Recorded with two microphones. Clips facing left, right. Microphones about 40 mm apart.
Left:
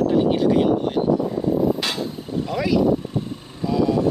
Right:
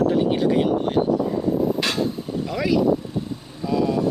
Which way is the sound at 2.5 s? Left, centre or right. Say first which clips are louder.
Left 1 dB; centre.